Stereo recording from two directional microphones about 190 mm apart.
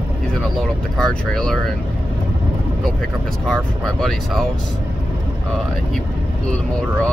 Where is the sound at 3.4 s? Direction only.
Centre (ahead or behind).